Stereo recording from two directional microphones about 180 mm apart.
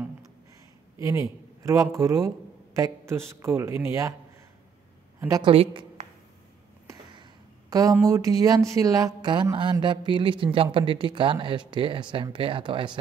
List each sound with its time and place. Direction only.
0.9 s a man's voice: 15° right (ahead or behind)
5.4 s speech: 30° right (ahead or behind)
7.7 s a woman's voice: 20° right (ahead or behind)